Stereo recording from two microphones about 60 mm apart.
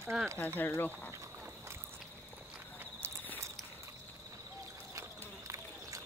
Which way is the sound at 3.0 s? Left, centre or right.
Right.